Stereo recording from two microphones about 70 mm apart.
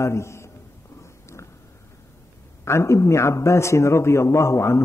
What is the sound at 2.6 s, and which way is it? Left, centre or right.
A man's voice, left.